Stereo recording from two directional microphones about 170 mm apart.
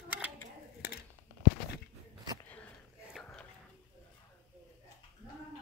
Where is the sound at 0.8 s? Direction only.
70° left (ahead or behind).